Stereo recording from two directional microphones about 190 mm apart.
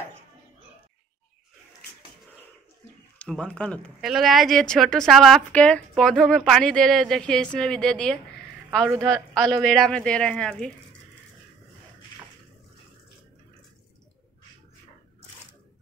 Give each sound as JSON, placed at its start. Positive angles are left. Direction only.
{"t": 3.2, "sound": "speech", "side_deg": 5}
{"t": 8.6, "sound": "a sound", "side_deg": 0}
{"t": 9.0, "sound": "speech", "side_deg": 5}